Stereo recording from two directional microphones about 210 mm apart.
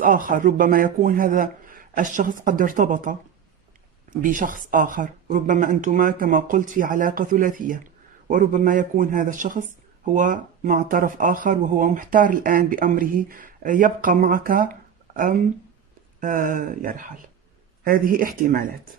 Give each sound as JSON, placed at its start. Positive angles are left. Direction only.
{"t": 0.0, "sound": "speech", "side_deg": -40}
{"t": 4.2, "sound": "speech", "side_deg": -40}